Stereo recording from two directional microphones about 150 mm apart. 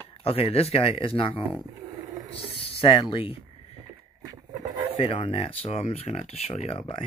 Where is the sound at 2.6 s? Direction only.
40° left (ahead or behind).